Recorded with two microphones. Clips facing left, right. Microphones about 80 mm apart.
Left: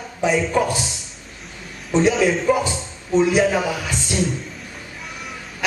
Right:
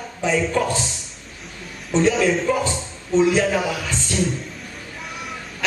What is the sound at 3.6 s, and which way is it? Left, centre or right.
Speech, centre.